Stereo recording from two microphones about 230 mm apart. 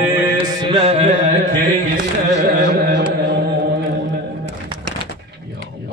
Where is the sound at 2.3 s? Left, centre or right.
Right.